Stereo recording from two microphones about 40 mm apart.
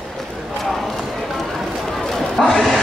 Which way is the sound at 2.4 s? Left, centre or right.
Centre.